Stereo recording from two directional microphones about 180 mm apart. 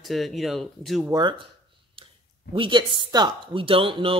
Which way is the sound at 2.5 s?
25° right (ahead or behind).